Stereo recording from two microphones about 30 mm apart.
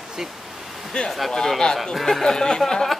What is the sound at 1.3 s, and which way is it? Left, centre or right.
Speech, centre.